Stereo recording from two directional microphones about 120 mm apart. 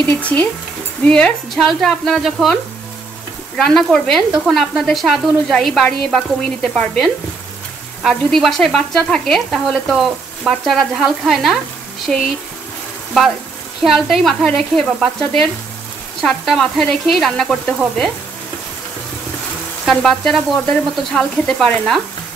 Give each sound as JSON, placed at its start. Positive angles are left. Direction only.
{"t": 0.2, "sound": "speech", "side_deg": 10}
{"t": 1.0, "sound": "sizzle", "side_deg": 5}
{"t": 19.8, "sound": "sizzle", "side_deg": 0}